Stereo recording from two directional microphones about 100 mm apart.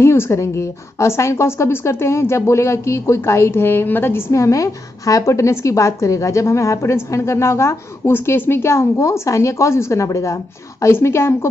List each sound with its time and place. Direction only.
0.0 s a woman's voice: 25° left (ahead or behind)